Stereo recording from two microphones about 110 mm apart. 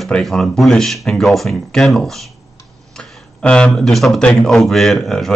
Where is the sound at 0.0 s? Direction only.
Centre (ahead or behind).